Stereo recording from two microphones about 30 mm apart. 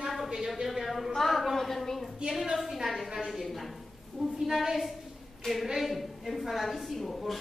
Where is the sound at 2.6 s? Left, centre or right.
Centre.